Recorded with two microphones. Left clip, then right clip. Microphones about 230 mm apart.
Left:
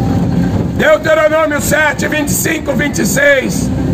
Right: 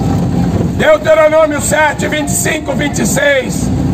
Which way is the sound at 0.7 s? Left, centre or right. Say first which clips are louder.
Right 2 dB; left.